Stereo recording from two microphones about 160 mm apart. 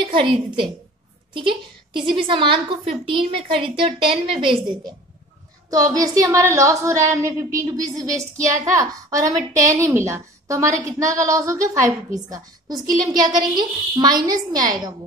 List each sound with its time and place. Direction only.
0.0 s a woman's voice: 30° right (ahead or behind)